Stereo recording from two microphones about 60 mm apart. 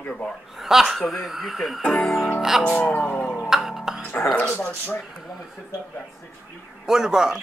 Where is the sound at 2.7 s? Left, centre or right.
Left.